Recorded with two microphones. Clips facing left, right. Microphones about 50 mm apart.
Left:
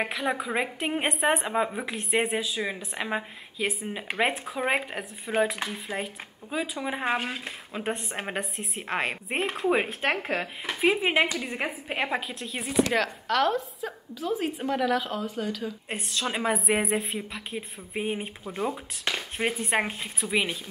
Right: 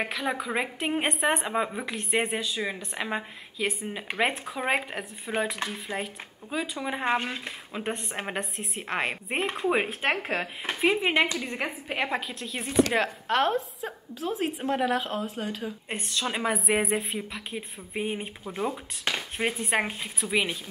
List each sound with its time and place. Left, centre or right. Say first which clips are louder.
0.0 s a woman's voice: left 1 dB; centre
12.9 s a woman's voice: even; right
15.9 s a woman's voice: even; centre